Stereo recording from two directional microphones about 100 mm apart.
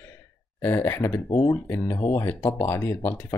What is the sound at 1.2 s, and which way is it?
Speech, 40° left (ahead or behind).